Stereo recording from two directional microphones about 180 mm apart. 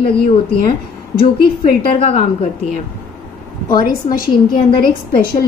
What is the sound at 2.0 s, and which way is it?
Speech, 35° left (ahead or behind).